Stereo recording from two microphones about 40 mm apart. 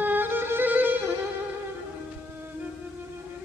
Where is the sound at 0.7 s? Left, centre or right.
Right.